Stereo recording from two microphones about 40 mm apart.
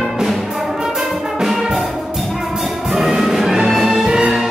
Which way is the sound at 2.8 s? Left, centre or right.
Centre.